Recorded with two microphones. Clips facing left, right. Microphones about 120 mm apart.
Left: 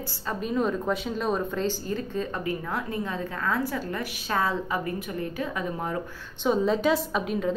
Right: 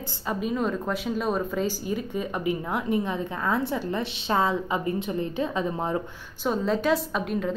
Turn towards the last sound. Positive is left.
turn(degrees=0)  # may be behind; listen again after turning